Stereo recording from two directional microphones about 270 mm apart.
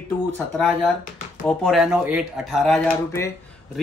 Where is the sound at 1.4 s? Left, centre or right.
Centre.